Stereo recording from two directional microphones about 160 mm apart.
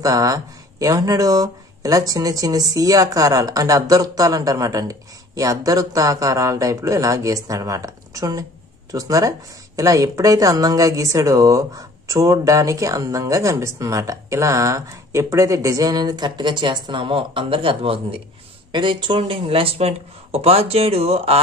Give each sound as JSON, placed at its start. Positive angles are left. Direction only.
{"t": 0.0, "sound": "speech", "side_deg": -20}